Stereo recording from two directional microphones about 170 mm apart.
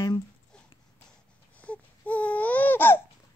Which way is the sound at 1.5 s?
10° left (ahead or behind).